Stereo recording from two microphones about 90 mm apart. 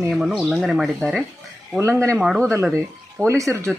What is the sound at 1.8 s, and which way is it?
Speech, 35° right (ahead or behind).